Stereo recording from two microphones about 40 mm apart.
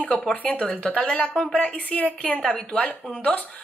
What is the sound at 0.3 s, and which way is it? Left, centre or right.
A woman's voice, left.